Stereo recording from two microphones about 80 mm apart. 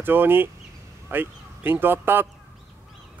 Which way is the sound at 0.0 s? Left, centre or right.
Right.